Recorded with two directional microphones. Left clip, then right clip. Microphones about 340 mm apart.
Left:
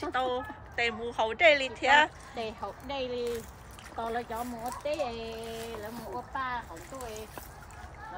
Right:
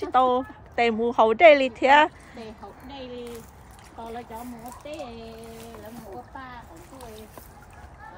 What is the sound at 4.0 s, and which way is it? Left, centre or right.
Speech, left.